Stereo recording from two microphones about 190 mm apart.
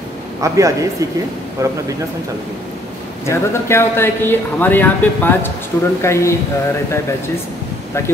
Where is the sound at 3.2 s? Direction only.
15° left (ahead or behind).